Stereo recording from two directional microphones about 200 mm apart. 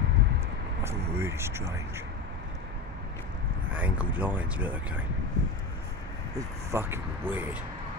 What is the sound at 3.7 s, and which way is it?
Speech, 10° right (ahead or behind).